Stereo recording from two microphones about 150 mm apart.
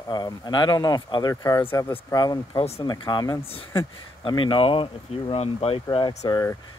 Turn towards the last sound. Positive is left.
turn(degrees=25)  # may be behind; listen again after turning